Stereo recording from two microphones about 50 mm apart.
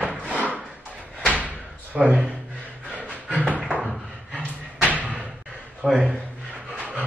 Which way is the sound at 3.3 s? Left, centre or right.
Right.